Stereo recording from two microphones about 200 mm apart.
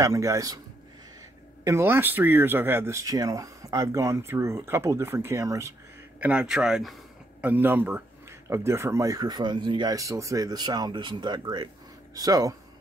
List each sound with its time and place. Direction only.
0.0 s speech: 15° right (ahead or behind)
1.6 s speech: 15° right (ahead or behind)